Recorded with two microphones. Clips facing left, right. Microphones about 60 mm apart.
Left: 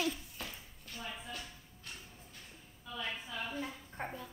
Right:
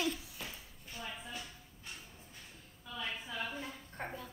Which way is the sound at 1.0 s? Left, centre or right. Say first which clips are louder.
Even; centre.